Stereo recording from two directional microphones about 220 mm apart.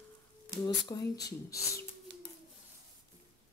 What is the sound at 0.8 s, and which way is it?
Speech, 15° left (ahead or behind).